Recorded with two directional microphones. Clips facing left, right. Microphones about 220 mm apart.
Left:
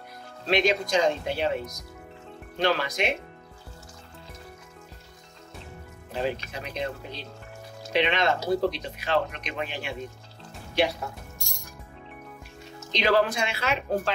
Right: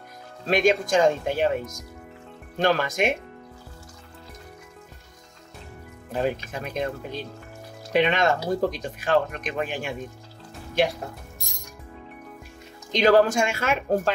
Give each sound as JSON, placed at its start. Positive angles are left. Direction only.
{"t": 0.5, "sound": "speech", "side_deg": -50}
{"t": 6.1, "sound": "speech", "side_deg": -50}
{"t": 12.9, "sound": "speech", "side_deg": -45}